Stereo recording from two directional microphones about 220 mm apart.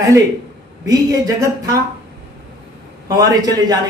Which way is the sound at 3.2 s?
15° right (ahead or behind).